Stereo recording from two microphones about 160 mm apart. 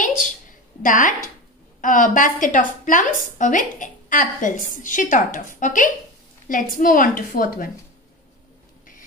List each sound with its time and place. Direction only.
0.8 s a woman's voice: 55° left (ahead or behind)